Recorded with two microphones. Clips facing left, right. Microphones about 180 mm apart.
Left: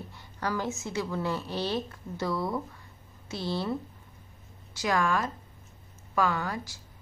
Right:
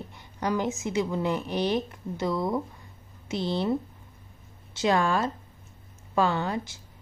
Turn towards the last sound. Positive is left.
turn(degrees=-25)  # may be behind; listen again after turning